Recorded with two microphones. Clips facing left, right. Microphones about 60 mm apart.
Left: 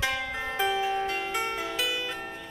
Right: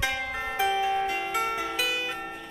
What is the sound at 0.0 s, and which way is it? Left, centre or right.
Music, centre.